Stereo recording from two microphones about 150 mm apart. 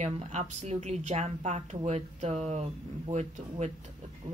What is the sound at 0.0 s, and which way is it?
Speech, 50° right (ahead or behind).